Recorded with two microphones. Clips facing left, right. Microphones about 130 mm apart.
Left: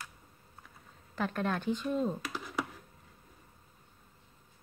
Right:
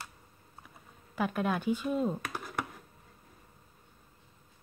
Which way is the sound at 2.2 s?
55° right (ahead or behind).